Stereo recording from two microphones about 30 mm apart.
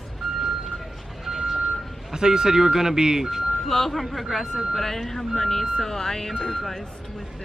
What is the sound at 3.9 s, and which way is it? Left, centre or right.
Speech, centre.